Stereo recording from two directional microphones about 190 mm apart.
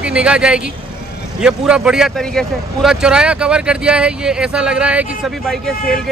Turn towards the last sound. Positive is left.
turn(degrees=0)  # may be behind; listen again after turning